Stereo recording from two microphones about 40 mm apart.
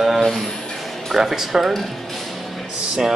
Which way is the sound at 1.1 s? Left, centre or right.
Centre.